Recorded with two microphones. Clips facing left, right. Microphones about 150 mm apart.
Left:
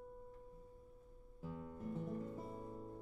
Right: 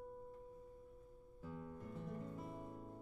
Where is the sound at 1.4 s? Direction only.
5° left (ahead or behind).